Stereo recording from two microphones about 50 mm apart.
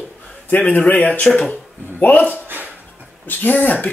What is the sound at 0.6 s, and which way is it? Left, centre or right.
Speech, left.